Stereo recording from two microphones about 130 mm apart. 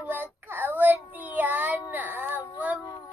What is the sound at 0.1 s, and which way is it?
Child singing, 15° right (ahead or behind).